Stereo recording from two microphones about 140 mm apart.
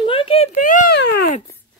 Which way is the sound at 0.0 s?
40° left (ahead or behind).